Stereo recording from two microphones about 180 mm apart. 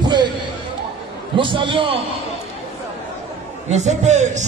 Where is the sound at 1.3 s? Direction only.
25° right (ahead or behind).